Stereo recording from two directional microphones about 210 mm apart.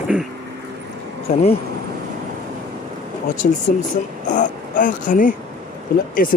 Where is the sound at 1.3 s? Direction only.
35° left (ahead or behind).